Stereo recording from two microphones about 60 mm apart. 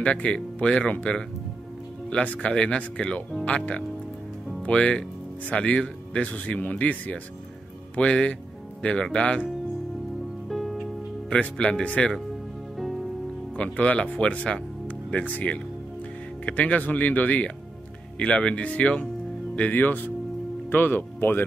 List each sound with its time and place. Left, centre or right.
0.0 s speech: left
2.0 s speech: left
10.5 s music: centre
11.2 s speech: centre
12.7 s music: centre
13.6 s speech: left